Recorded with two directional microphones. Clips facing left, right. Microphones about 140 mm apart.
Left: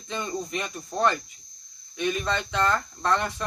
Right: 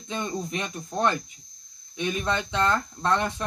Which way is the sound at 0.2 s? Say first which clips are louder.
Even; 20° right (ahead or behind).